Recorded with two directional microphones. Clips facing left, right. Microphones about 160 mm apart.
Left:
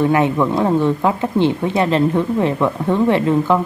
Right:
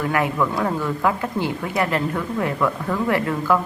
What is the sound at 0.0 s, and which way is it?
Speech, 25° left (ahead or behind).